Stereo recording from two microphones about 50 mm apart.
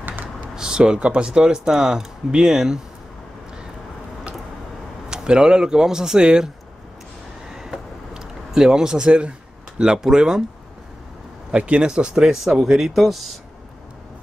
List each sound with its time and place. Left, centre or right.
0.0 s typing: right
0.6 s speech: centre
5.1 s speech: centre
7.4 s a sound: centre
9.8 s speech: centre
11.5 s speech: right; by 13.3 s centre